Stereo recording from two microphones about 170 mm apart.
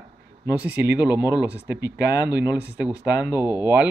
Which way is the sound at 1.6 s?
85° right.